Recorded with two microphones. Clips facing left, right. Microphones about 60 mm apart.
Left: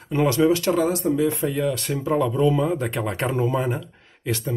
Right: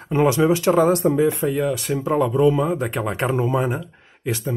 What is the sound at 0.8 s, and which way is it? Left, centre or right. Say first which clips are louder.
Speech: right 5 dB; right.